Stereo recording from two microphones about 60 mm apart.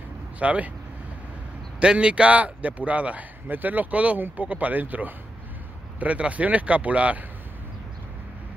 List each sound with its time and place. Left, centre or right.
0.4 s a man's voice: right
1.8 s a man's voice: centre